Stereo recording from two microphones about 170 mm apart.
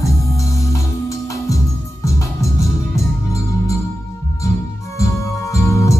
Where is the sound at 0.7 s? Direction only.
20° left (ahead or behind).